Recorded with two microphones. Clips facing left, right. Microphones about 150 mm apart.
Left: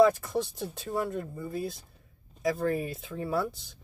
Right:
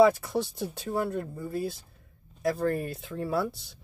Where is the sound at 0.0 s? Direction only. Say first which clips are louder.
Right 1 dB; centre (ahead or behind).